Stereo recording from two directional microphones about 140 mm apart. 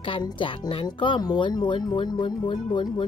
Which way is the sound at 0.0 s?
35° left (ahead or behind).